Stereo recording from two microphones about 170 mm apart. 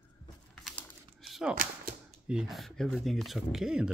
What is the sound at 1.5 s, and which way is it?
Speech, 55° right (ahead or behind).